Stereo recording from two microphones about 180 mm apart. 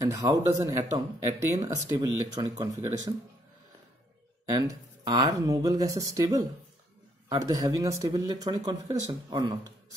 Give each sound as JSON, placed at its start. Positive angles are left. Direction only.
{"t": 0.0, "sound": "speech", "side_deg": -15}
{"t": 4.5, "sound": "speech", "side_deg": -20}